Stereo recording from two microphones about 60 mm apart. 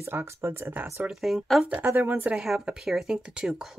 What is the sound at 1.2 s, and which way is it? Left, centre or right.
Speech, centre.